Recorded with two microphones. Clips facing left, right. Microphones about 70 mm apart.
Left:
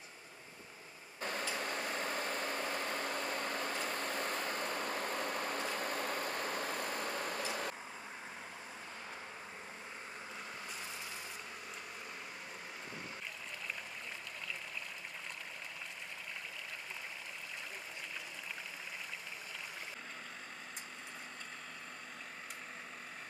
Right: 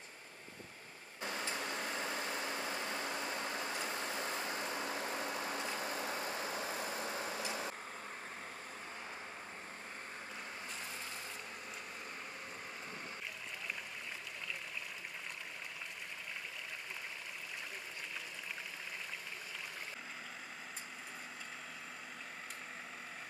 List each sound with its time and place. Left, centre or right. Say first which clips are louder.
1.2 s vehicle: left 2 dB; left